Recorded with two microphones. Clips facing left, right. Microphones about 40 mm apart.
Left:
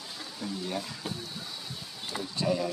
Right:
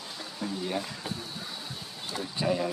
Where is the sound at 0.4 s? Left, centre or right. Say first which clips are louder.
Right 2 dB; centre.